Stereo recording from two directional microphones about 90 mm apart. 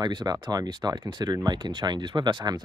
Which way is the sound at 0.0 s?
50° right (ahead or behind).